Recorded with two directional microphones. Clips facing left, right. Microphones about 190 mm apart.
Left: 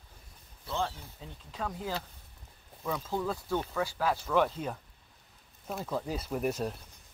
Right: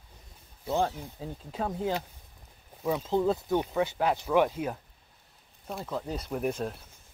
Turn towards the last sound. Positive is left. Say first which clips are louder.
# right 1 dB
turn(degrees=0)  # may be behind; listen again after turning